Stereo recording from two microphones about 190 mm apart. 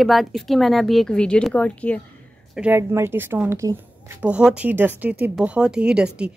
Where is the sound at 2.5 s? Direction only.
5° right (ahead or behind).